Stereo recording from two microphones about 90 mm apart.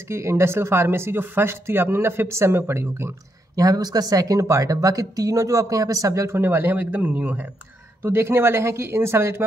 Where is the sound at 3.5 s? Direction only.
45° right (ahead or behind).